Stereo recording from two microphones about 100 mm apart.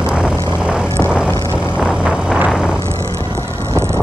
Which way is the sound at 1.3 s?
25° left (ahead or behind).